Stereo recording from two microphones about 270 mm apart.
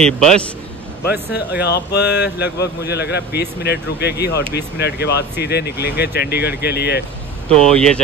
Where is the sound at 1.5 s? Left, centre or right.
Left.